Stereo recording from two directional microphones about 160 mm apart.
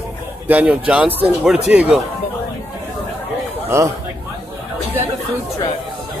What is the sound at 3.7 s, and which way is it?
Speech, 15° right (ahead or behind).